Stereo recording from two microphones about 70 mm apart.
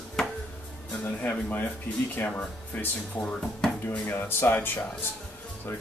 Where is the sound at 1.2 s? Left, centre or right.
Left.